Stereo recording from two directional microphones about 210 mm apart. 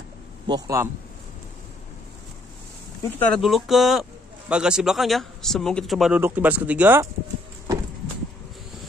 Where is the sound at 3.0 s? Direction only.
5° left (ahead or behind).